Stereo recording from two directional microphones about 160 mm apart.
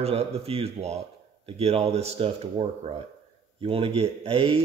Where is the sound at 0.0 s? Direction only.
40° right (ahead or behind).